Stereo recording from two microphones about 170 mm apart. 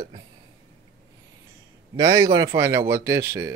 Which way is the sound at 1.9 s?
20° right (ahead or behind).